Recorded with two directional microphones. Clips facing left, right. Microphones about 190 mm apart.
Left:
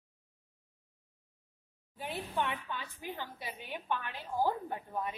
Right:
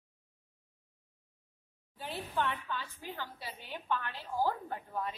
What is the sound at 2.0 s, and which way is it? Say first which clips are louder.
A woman's voice: even; 15° left (ahead or behind).